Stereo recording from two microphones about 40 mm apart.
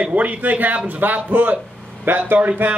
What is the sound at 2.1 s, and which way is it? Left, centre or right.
Speech, right.